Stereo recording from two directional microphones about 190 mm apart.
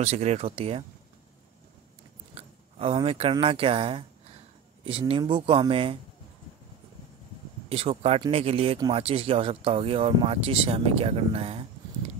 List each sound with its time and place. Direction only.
0.0 s speech: 35° right (ahead or behind)
2.3 s speech: 30° right (ahead or behind)
7.7 s speech: 30° right (ahead or behind)